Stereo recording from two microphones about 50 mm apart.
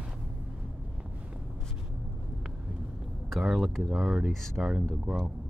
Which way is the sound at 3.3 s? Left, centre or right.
Centre.